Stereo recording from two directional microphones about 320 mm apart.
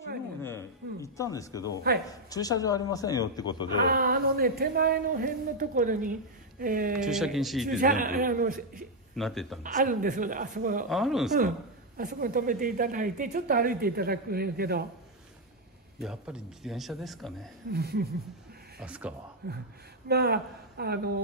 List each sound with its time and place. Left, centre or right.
0.4 s a man's voice: centre
3.9 s speech: right
7.0 s a man's voice: centre
7.8 s speech: right
9.1 s a man's voice: centre
9.6 s speech: right
10.9 s a man's voice: centre
12.0 s speech: right
16.0 s a man's voice: centre
17.6 s speech: right
18.8 s a man's voice: centre
19.4 s speech: right